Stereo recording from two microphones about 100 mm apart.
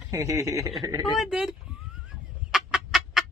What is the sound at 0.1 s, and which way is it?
Speech, 30° right (ahead or behind).